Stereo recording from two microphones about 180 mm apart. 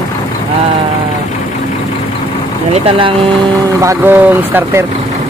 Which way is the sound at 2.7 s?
30° right (ahead or behind).